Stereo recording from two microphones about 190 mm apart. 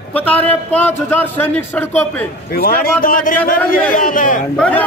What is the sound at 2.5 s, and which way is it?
A man's voice, 50° left (ahead or behind).